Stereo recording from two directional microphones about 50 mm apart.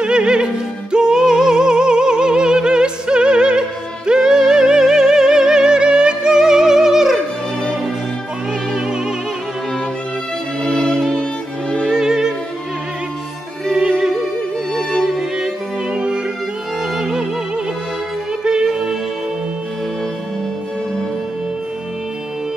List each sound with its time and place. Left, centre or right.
0.0 s music: centre
10.6 s music: centre
11.9 s music: centre
13.7 s music: centre
14.7 s music: centre
15.3 s music: centre
18.4 s music: centre